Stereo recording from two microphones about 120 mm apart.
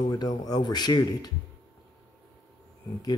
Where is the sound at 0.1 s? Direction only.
30° left (ahead or behind).